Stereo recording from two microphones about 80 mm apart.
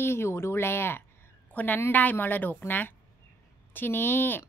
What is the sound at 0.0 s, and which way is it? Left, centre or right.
Speech, left.